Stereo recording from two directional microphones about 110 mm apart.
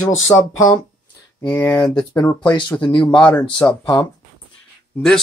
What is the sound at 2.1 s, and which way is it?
Speech, 25° left (ahead or behind).